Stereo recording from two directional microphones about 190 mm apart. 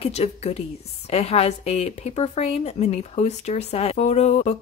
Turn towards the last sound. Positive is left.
turn(degrees=35)  # may be behind; listen again after turning